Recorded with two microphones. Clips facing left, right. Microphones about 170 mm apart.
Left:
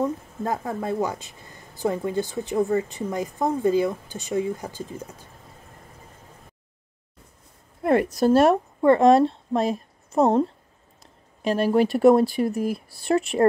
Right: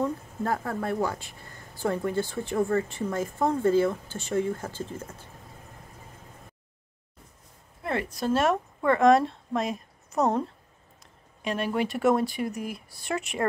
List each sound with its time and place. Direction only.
0.0 s speech: 20° left (ahead or behind)
7.8 s a woman's voice: 45° left (ahead or behind)